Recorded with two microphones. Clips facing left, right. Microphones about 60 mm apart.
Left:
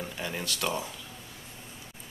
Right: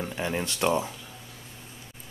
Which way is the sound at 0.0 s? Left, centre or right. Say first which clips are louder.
Right 5 dB; right.